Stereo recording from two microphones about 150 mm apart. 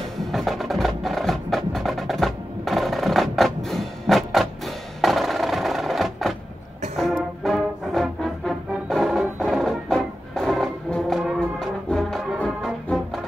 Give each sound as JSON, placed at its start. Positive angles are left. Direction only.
{"t": 0.2, "sound": "music", "side_deg": 0}